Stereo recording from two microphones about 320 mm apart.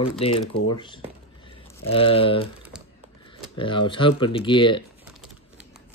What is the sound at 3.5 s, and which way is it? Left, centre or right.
Speech, centre.